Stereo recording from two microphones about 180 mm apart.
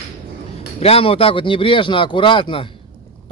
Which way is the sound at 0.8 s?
30° left (ahead or behind).